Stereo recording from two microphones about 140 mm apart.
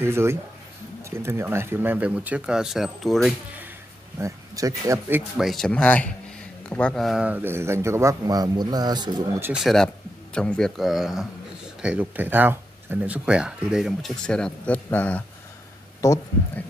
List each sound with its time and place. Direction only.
0.0 s speech: 20° right (ahead or behind); by 3.3 s centre (ahead or behind)
4.2 s a man's voice: 25° right (ahead or behind)
5.4 s speech: centre (ahead or behind)
7.2 s a man's voice: 15° right (ahead or behind); by 9.1 s 30° right (ahead or behind)
9.6 s speech: centre (ahead or behind)
16.0 s speech: 20° left (ahead or behind)